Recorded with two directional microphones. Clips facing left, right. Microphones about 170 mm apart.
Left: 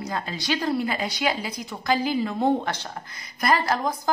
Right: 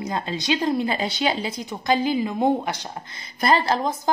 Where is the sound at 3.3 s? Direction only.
25° right (ahead or behind).